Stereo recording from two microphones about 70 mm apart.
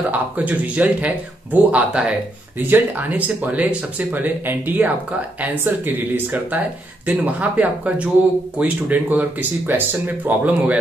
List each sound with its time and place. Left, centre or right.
0.1 s speech: right
2.6 s speech: right